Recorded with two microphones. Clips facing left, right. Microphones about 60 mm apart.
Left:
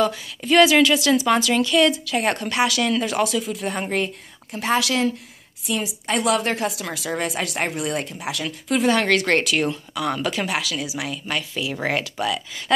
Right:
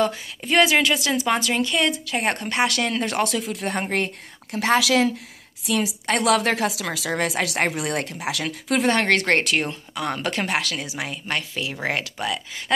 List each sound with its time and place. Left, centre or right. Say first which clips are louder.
0.0 s a woman's voice: left 1 dB; right
3.1 s a woman's voice: left 2 dB; right
5.7 s a woman's voice: right 2 dB; right
8.8 s a woman's voice: left 1 dB; right
11.0 s a woman's voice: left 1 dB; right